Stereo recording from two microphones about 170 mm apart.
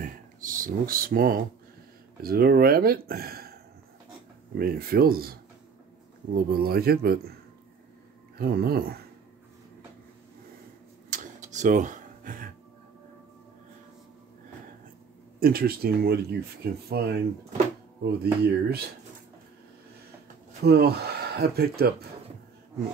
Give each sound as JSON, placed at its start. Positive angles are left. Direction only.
{"t": 0.0, "sound": "speech", "side_deg": -55}
{"t": 4.6, "sound": "speech", "side_deg": -60}
{"t": 8.4, "sound": "speech", "side_deg": -65}
{"t": 11.1, "sound": "a sound", "side_deg": -50}
{"t": 15.4, "sound": "speech", "side_deg": -65}
{"t": 20.6, "sound": "speech", "side_deg": -70}